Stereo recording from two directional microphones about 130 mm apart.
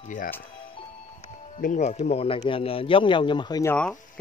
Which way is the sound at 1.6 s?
65° left (ahead or behind).